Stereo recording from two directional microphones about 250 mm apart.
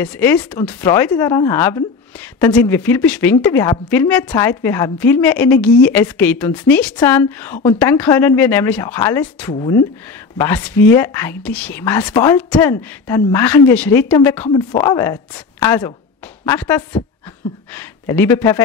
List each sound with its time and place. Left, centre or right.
0.0 s speech: centre